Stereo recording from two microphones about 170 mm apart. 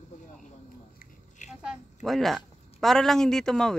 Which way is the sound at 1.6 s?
Centre (ahead or behind).